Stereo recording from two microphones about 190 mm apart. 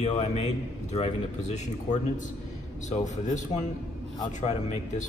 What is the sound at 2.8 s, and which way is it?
Speech, 40° left (ahead or behind).